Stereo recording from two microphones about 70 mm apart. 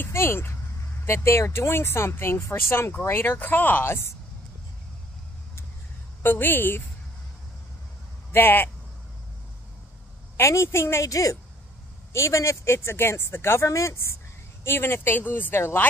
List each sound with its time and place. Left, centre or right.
0.1 s speech: left
6.2 s speech: left
8.3 s speech: left
10.3 s a woman's voice: left